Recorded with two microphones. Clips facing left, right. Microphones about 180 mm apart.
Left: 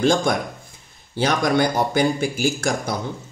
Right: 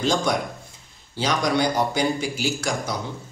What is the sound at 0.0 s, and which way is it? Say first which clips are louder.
Speech: left 4 dB; 55° left (ahead or behind).